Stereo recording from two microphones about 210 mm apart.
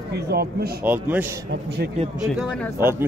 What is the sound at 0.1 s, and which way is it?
Speech, 50° right (ahead or behind).